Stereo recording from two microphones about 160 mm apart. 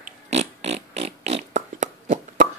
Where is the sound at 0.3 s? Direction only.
45° right (ahead or behind).